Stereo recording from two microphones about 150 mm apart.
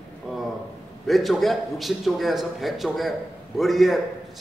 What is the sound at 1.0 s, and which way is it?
A man's voice, centre (ahead or behind).